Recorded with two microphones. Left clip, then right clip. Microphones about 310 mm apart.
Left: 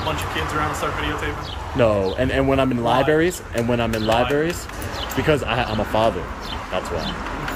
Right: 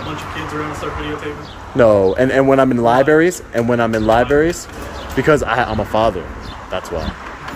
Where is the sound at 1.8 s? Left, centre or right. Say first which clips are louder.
Right 7 dB; centre.